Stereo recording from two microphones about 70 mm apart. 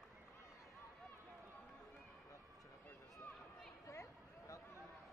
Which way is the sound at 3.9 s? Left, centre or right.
Left.